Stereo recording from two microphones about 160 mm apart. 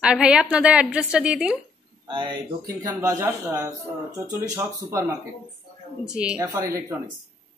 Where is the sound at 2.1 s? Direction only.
30° right (ahead or behind).